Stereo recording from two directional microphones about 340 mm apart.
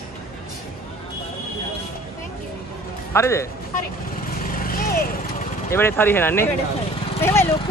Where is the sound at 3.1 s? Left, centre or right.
Centre.